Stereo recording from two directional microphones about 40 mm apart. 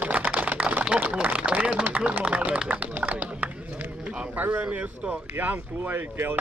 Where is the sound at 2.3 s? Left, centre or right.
Right.